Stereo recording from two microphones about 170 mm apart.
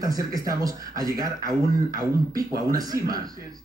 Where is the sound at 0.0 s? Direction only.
20° right (ahead or behind).